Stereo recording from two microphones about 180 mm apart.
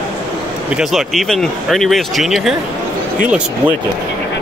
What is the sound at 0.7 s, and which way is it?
Speech, centre (ahead or behind).